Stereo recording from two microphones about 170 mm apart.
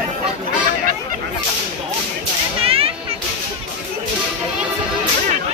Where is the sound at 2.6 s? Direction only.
35° right (ahead or behind).